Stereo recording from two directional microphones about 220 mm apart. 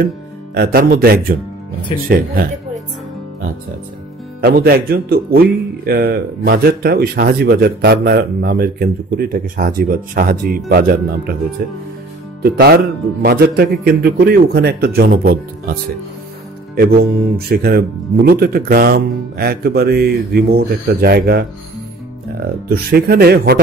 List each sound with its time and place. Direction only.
0.6 s a man's voice: 45° right (ahead or behind)
4.4 s speech: 40° right (ahead or behind)
12.4 s speech: 45° right (ahead or behind)
22.7 s speech: 45° right (ahead or behind)